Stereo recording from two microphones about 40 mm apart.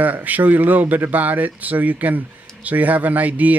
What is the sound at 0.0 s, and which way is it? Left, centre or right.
Speech, right.